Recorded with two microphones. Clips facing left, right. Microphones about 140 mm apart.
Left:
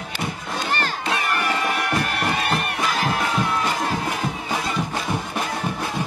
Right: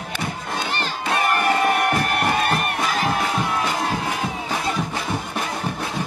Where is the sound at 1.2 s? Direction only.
50° right (ahead or behind).